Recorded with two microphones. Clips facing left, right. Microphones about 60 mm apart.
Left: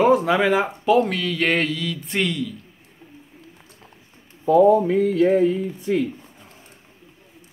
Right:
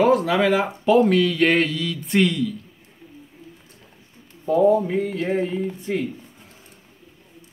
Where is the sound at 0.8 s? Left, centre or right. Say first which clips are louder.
Right 4 dB; centre.